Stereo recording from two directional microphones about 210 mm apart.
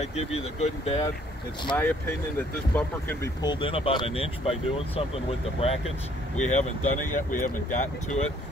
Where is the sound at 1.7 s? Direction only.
10° left (ahead or behind); by 7.9 s 40° left (ahead or behind).